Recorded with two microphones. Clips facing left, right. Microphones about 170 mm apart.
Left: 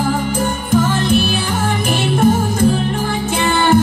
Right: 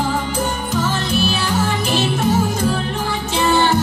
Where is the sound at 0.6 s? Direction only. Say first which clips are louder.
Left 6 dB; 55° left (ahead or behind).